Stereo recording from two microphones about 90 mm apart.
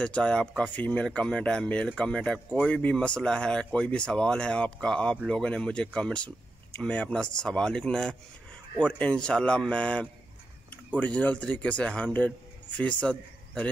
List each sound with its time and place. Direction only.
0.0 s a man's voice: 10° left (ahead or behind)